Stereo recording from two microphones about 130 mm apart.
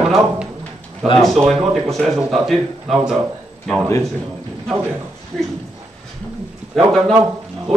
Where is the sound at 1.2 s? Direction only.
Centre (ahead or behind).